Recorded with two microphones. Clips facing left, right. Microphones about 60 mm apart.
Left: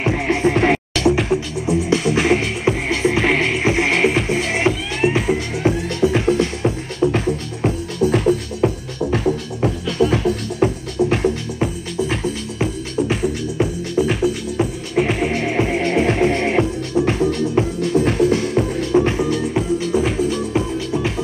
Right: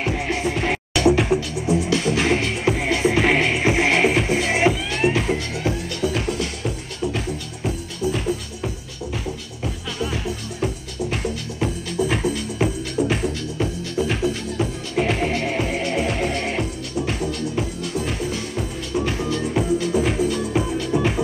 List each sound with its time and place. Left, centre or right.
0.0 s music: left
1.0 s music: centre
5.0 s music: centre
5.6 s music: left
12.0 s music: centre
13.6 s music: centre
15.3 s music: left
18.0 s music: left
19.3 s music: centre